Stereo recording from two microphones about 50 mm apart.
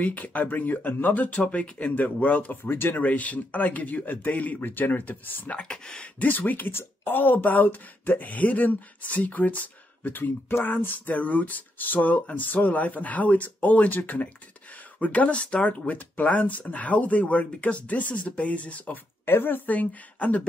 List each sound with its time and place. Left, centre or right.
0.0 s speech: left
3.0 s speech: left
5.6 s speech: centre
6.1 s speech: left
19.2 s speech: left